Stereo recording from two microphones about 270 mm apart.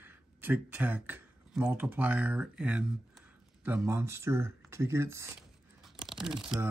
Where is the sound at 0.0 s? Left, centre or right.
Centre.